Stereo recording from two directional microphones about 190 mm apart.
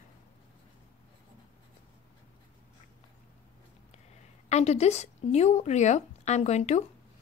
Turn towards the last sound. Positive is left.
turn(degrees=35)  # may be behind; listen again after turning